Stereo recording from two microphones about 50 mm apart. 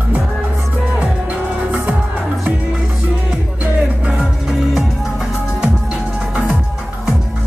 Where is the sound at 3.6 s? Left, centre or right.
Right.